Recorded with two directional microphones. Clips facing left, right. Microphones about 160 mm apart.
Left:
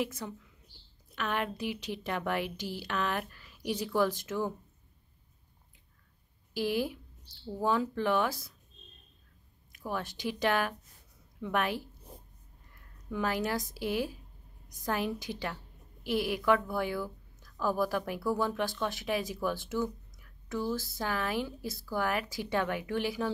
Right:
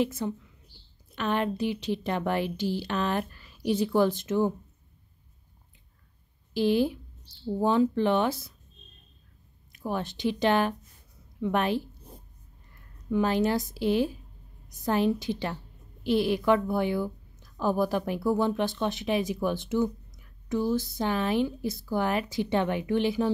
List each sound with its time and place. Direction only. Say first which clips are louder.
0.0 s a woman's voice: right 7 dB; 25° right (ahead or behind)
6.5 s a woman's voice: right 7 dB; 25° right (ahead or behind)
9.7 s a woman's voice: right 5 dB; 25° right (ahead or behind)
13.1 s a woman's voice: right 7 dB; 25° right (ahead or behind)